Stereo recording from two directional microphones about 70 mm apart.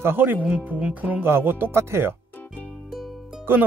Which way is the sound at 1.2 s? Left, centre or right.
Right.